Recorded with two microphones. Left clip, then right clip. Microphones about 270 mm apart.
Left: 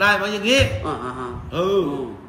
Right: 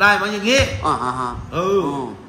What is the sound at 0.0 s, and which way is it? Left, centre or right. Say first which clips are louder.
Speech: right 3 dB; centre.